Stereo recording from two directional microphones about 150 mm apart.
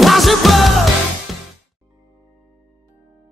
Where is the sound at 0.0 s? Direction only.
Centre (ahead or behind).